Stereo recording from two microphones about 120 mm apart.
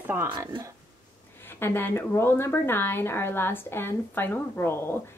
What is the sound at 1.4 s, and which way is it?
Speech, 20° left (ahead or behind).